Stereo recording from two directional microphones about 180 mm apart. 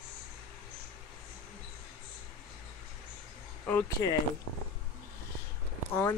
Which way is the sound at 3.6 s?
10° left (ahead or behind).